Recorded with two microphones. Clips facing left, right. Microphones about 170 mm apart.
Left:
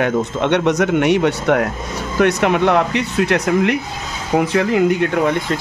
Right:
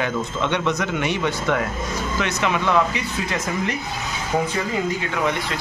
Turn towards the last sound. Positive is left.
turn(degrees=55)  # may be behind; listen again after turning